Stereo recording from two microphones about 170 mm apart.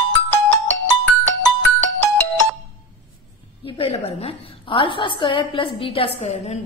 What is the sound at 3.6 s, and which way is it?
A woman's voice, 35° left (ahead or behind).